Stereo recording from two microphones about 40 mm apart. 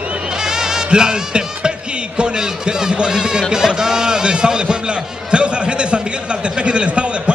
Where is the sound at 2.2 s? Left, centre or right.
Centre.